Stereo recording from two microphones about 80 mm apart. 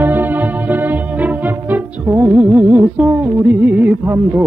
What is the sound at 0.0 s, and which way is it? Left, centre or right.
Music, right.